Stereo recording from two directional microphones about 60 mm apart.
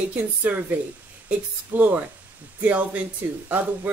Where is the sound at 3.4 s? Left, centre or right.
Right.